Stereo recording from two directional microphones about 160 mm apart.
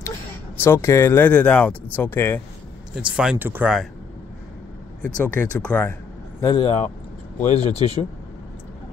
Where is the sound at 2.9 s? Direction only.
5° right (ahead or behind).